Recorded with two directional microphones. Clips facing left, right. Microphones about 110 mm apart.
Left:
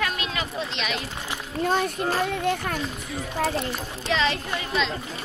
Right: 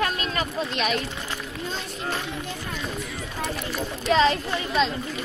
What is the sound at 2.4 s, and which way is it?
Speech, 60° left (ahead or behind).